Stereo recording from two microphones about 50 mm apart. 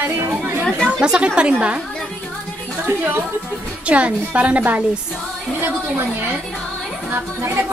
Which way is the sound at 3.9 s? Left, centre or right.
Right.